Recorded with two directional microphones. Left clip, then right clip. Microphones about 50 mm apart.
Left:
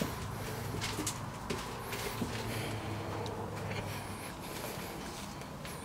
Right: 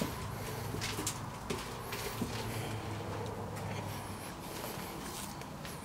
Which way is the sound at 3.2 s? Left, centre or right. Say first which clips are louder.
Left 2 dB; left.